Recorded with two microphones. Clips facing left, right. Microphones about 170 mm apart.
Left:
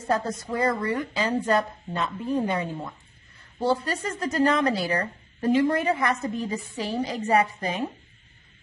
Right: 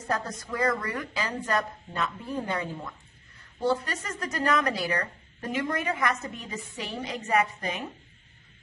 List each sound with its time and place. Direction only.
0.0 s a woman's voice: 25° left (ahead or behind)
3.6 s a woman's voice: 30° left (ahead or behind)